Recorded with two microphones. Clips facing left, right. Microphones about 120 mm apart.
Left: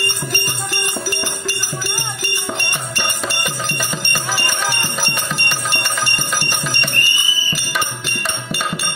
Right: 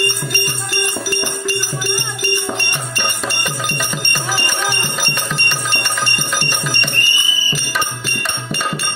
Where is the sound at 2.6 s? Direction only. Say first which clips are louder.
Right 1 dB; 10° left (ahead or behind).